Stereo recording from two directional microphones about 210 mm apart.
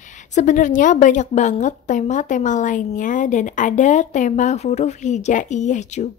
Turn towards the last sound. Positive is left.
turn(degrees=35)  # may be behind; listen again after turning